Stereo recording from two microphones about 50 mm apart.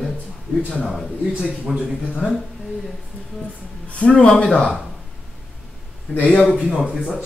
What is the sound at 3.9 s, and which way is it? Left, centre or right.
Speech, left.